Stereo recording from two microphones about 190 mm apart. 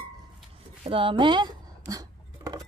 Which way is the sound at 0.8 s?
30° right (ahead or behind).